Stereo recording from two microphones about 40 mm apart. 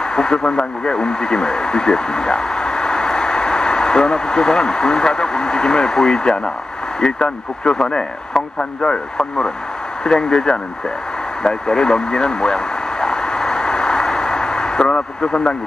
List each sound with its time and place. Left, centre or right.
0.1 s speech: centre
11.4 s vehicle: centre